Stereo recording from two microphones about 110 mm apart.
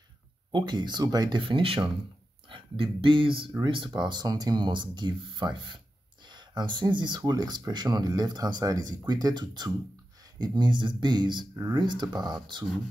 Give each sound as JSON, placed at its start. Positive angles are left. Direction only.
{"t": 0.5, "sound": "speech", "side_deg": -45}
{"t": 1.4, "sound": "speech", "side_deg": -55}
{"t": 11.5, "sound": "speech", "side_deg": -30}
{"t": 11.8, "sound": "speech", "side_deg": -45}